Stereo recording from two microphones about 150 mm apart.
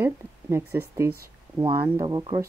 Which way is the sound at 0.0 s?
15° right (ahead or behind).